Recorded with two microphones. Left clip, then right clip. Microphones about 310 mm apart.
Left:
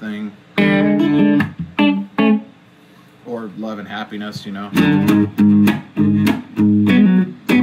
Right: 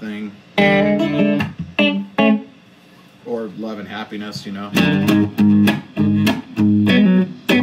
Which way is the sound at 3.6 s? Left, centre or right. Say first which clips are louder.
Left 1 dB; centre.